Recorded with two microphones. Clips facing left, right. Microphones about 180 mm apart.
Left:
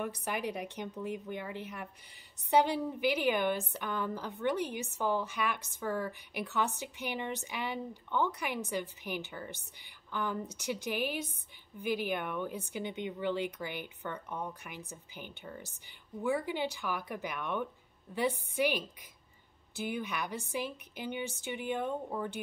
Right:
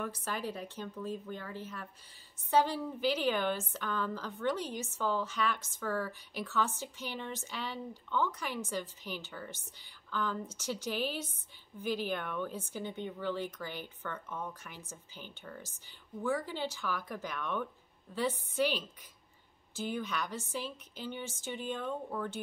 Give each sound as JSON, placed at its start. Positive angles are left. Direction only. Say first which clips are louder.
{"t": 0.0, "sound": "speech", "louder": "left 2 dB", "side_deg": 15}